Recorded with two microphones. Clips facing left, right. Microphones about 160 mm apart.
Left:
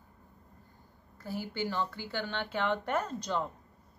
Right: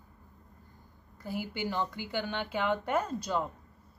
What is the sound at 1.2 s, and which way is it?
Speech, 15° right (ahead or behind).